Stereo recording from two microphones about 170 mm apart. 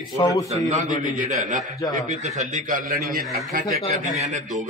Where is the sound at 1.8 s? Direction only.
20° left (ahead or behind).